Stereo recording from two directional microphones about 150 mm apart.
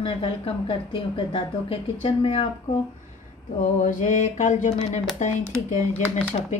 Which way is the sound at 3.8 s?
55° left (ahead or behind).